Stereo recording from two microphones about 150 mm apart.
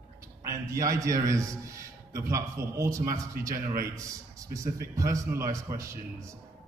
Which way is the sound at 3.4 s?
90° right.